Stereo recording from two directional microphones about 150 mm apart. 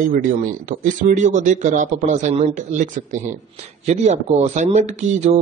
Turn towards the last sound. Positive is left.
turn(degrees=-50)  # may be behind; listen again after turning